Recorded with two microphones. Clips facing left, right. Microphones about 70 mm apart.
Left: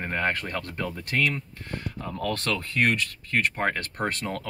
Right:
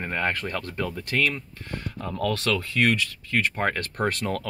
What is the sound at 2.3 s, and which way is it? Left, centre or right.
Speech, left.